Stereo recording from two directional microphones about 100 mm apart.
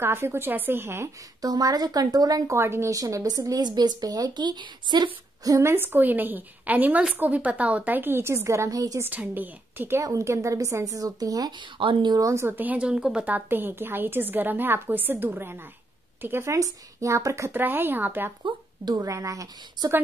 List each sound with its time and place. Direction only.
0.0 s a woman's voice: 25° right (ahead or behind)
1.4 s speech: 40° right (ahead or behind)
5.4 s a woman's voice: 30° right (ahead or behind)
9.0 s a woman's voice: 15° right (ahead or behind)
10.0 s speech: 30° right (ahead or behind)
11.8 s speech: 55° right (ahead or behind)
12.2 s a woman's voice: 30° right (ahead or behind)
17.5 s a woman's voice: 20° right (ahead or behind)
18.9 s speech: 35° right (ahead or behind)